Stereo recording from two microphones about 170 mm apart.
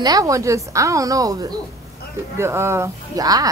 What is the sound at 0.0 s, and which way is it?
A woman's voice, 20° right (ahead or behind).